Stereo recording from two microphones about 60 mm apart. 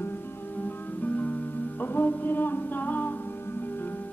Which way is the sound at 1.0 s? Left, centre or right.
Left.